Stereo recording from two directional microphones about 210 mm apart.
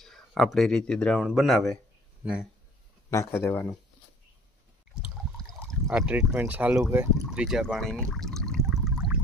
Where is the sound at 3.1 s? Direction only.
15° left (ahead or behind).